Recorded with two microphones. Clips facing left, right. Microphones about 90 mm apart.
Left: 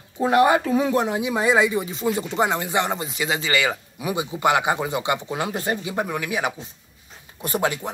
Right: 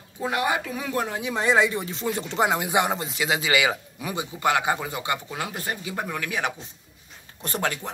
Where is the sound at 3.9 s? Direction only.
15° left (ahead or behind).